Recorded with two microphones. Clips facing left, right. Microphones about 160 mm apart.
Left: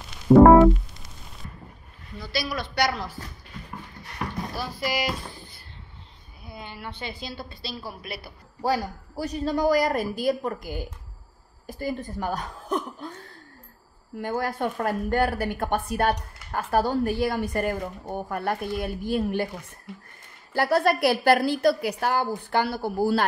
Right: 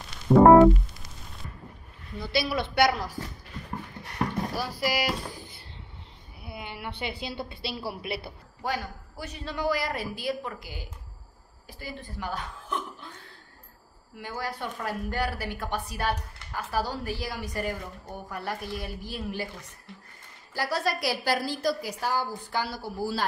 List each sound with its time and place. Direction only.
0.3 s music: centre (ahead or behind)
2.1 s speech: 25° right (ahead or behind)
4.6 s speech: 10° right (ahead or behind)
6.4 s a sound: 15° right (ahead or behind)
7.2 s speech: 20° right (ahead or behind)
8.6 s speech: 35° left (ahead or behind)
14.1 s speech: 50° left (ahead or behind)
20.5 s a woman's voice: 55° left (ahead or behind)